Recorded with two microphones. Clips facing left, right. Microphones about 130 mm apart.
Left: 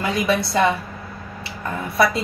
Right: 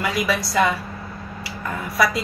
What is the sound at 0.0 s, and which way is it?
Speech, 25° left (ahead or behind).